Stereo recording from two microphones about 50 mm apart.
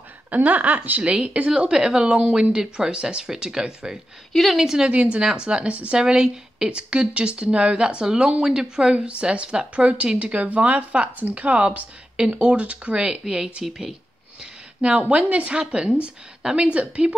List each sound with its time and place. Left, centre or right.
0.3 s speech: right
1.0 s speech: right
4.3 s speech: centre
4.6 s speech: centre
4.8 s speech: right
13.7 s speech: centre
14.4 s speech: centre